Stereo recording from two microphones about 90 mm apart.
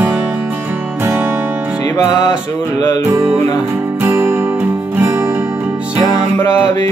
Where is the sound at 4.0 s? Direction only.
25° right (ahead or behind).